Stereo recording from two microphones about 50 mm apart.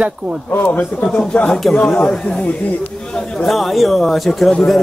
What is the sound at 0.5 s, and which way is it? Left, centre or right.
Speech, left.